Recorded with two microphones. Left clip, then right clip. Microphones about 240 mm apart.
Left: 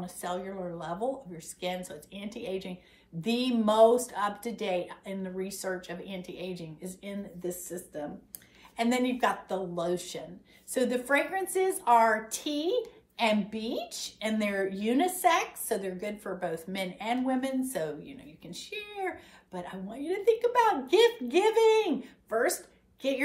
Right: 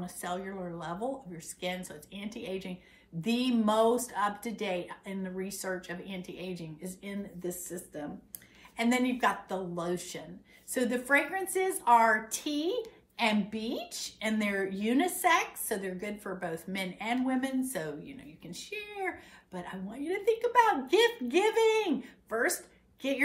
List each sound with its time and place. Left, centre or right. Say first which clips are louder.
0.0 s a woman's voice: left 2 dB; centre